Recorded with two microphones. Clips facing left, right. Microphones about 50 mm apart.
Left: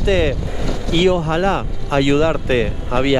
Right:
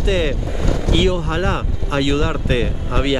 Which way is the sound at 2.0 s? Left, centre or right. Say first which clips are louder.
Left 5 dB; centre.